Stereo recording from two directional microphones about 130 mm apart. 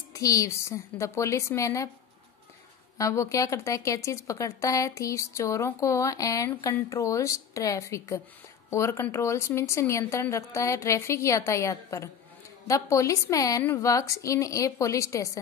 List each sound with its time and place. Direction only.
0.1 s speech: 25° left (ahead or behind)
3.0 s speech: 25° left (ahead or behind)